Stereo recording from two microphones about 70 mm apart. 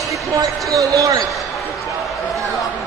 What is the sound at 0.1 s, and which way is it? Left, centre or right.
Speech, right.